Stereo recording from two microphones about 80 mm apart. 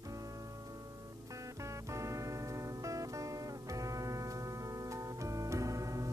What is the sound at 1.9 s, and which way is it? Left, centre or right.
Music, right.